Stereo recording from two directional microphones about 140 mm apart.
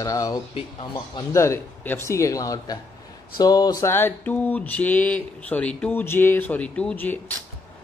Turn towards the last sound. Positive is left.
turn(degrees=10)  # may be behind; listen again after turning